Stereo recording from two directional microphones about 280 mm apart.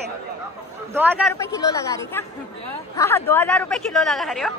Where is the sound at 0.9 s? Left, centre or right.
Centre.